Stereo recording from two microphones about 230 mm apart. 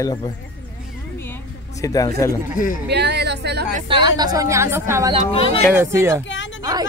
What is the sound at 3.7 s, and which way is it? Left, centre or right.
Speech, right.